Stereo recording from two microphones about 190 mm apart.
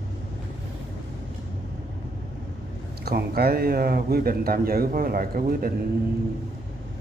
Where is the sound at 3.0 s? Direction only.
55° right (ahead or behind).